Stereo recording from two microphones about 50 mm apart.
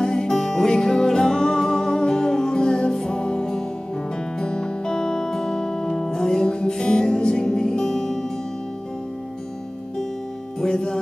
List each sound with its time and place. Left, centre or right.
0.0 s music: centre
10.6 s music: centre